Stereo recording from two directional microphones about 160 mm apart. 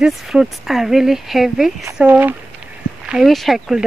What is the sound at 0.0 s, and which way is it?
Speech, 5° right (ahead or behind).